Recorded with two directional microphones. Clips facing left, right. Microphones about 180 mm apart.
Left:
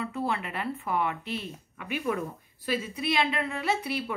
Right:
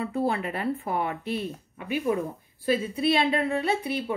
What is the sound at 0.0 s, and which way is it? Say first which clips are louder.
Speech: right 4 dB; 35° right (ahead or behind).